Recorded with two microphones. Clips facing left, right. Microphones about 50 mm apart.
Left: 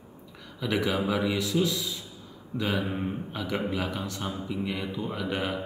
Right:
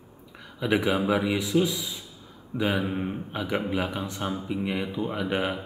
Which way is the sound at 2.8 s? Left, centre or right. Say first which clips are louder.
Right 2 dB; centre.